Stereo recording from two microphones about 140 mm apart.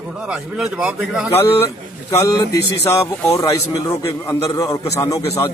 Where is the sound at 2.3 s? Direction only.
25° left (ahead or behind).